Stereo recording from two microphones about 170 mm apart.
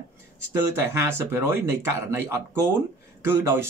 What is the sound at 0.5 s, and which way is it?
Speech, 15° right (ahead or behind).